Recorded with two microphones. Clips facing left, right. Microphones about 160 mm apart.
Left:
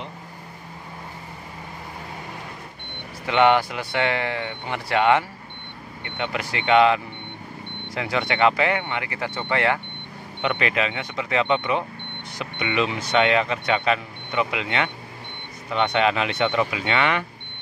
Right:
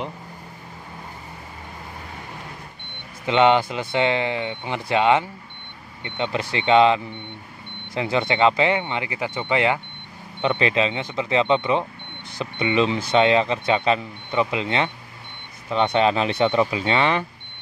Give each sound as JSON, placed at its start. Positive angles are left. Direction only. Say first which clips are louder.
{"t": 3.3, "sound": "speech", "louder": "right 1 dB", "side_deg": -20}
{"t": 10.4, "sound": "speech", "louder": "right 3 dB", "side_deg": -25}